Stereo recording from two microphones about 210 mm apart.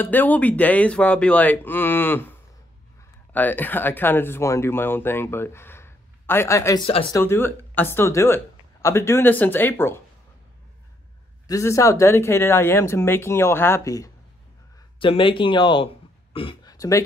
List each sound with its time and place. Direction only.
0.0 s speech: 10° left (ahead or behind)
3.3 s speech: 10° left (ahead or behind)
6.9 s speech: 25° left (ahead or behind)
7.2 s speech: 10° left (ahead or behind)
11.4 s speech: 15° left (ahead or behind)
16.3 s a sound: 20° left (ahead or behind)